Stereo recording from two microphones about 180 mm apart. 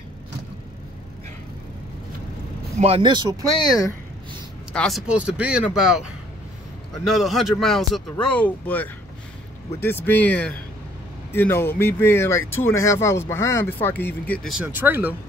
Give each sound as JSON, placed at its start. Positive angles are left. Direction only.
{"t": 2.8, "sound": "speech", "side_deg": -30}
{"t": 3.3, "sound": "speech", "side_deg": 20}
{"t": 4.7, "sound": "a man's voice", "side_deg": 0}
{"t": 7.1, "sound": "a man's voice", "side_deg": 0}